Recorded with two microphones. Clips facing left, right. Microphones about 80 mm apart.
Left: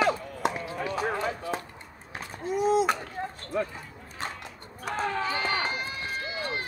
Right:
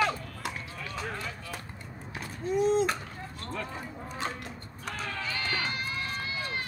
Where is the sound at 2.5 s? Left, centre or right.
Centre.